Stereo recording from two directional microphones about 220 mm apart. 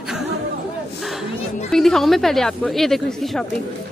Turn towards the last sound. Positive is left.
turn(degrees=0)  # may be behind; listen again after turning